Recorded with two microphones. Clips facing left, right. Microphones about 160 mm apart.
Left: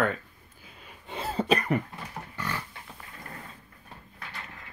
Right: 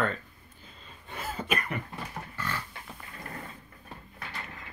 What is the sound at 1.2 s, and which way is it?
Cough, 30° left (ahead or behind).